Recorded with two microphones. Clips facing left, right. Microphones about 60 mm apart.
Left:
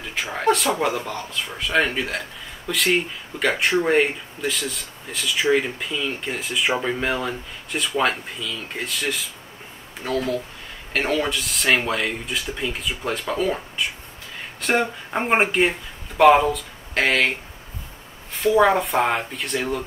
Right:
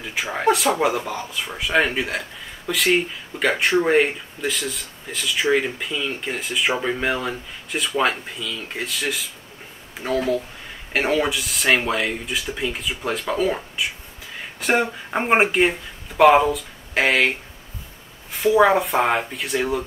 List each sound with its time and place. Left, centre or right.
0.0 s speech: centre
18.3 s speech: centre